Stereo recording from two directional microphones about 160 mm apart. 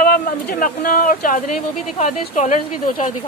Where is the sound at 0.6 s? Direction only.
60° left (ahead or behind).